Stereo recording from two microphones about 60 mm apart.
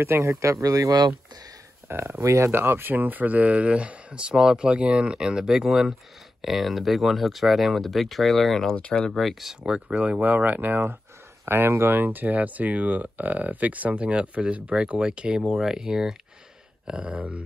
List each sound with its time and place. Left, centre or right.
0.0 s speech: right
1.9 s speech: right
2.2 s speech: right
2.5 s speech: right; by 8.7 s centre
8.7 s speech: centre
9.1 s speech: centre
9.6 s speech: centre
11.4 s speech: right